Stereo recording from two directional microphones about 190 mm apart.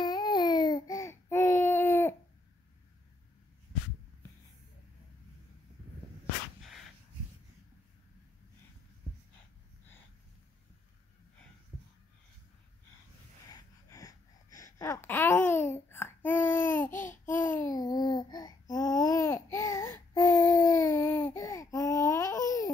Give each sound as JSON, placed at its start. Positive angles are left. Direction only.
{"t": 0.0, "sound": "baby cry", "side_deg": 20}
{"t": 13.5, "sound": "a sound", "side_deg": 20}
{"t": 17.3, "sound": "babbling", "side_deg": 10}